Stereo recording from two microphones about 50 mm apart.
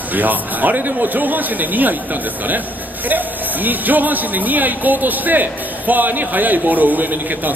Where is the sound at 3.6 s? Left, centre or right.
Right.